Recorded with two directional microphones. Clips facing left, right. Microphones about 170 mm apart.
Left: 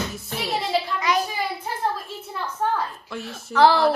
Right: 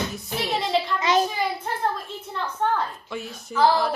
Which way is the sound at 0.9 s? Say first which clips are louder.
Right 4 dB; 25° right (ahead or behind).